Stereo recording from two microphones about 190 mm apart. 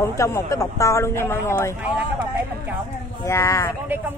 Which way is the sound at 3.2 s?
15° left (ahead or behind).